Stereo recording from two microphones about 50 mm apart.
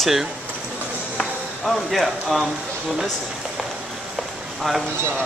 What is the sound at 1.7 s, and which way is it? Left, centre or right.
Speech, centre.